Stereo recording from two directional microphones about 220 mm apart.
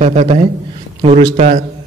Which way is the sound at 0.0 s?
30° right (ahead or behind).